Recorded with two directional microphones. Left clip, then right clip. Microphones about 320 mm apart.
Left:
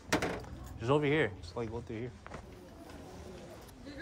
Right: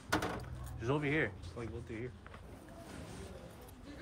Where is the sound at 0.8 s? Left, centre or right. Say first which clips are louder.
Left 5 dB; centre.